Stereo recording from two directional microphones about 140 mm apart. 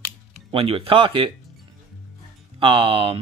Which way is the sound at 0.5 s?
40° right (ahead or behind).